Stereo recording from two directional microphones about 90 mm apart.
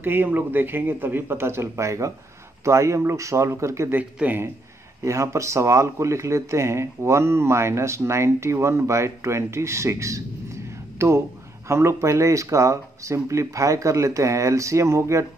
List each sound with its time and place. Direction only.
0.0 s speech: 25° right (ahead or behind)
3.9 s speech: 20° right (ahead or behind)
5.0 s speech: 35° right (ahead or behind)